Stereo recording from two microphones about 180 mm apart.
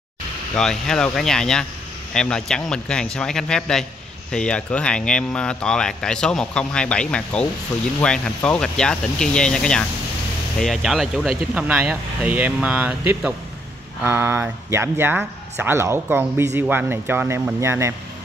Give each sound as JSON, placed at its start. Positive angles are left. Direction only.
{"t": 0.6, "sound": "speech", "side_deg": 5}